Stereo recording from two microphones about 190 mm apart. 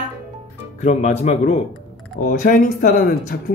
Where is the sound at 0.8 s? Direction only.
35° left (ahead or behind).